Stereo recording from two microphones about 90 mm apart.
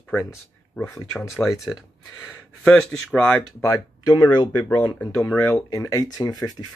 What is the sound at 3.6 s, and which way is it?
Speech, 45° left (ahead or behind).